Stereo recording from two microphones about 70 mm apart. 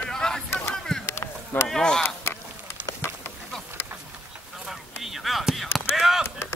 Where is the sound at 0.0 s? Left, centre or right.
Centre.